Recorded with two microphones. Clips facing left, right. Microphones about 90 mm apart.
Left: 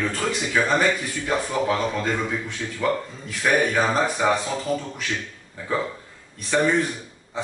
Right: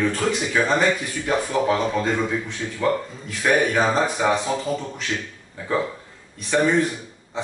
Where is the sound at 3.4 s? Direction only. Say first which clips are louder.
Right 1 dB; 5° right (ahead or behind).